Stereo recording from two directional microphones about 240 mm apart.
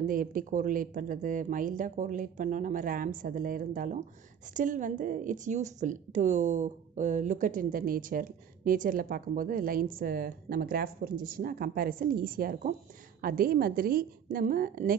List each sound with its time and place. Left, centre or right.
0.0 s speech: right